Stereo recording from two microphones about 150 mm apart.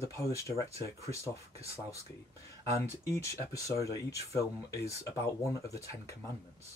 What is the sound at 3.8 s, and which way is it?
Speech, 20° left (ahead or behind).